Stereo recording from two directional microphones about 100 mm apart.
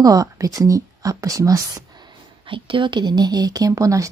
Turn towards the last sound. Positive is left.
turn(degrees=-35)  # may be behind; listen again after turning